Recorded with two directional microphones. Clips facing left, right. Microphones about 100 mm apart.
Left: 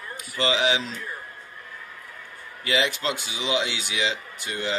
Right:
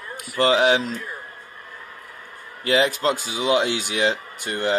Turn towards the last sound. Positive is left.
turn(degrees=-50)  # may be behind; listen again after turning